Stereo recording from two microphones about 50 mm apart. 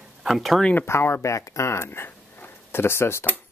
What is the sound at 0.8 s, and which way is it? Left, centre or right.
Speech, left.